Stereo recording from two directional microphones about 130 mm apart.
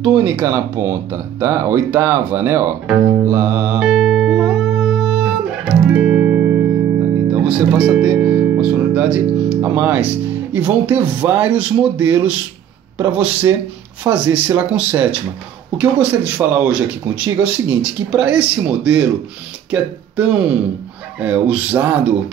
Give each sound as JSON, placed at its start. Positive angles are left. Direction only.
{"t": 0.0, "sound": "speech", "side_deg": -15}
{"t": 3.3, "sound": "music", "side_deg": -15}
{"t": 7.2, "sound": "speech", "side_deg": -10}